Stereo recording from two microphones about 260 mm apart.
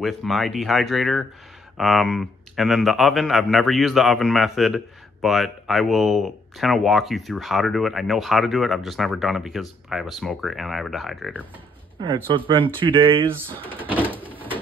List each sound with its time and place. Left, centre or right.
0.0 s speech: centre
12.0 s speech: centre
14.0 s bird: centre